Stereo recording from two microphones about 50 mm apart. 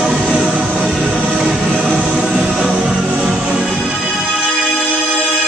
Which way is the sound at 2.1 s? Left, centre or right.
Centre.